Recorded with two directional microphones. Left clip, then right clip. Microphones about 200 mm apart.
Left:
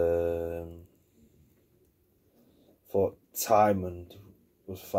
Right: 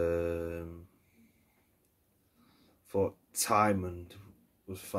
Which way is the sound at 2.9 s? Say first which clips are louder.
Left 4 dB; 45° right (ahead or behind).